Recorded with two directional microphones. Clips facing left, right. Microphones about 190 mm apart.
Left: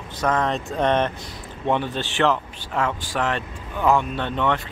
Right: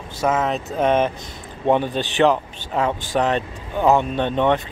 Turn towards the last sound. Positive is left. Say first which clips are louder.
# right 5 dB
turn(degrees=-20)  # may be behind; listen again after turning